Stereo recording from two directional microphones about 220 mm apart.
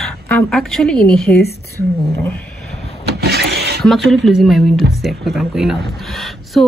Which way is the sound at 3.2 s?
45° right (ahead or behind).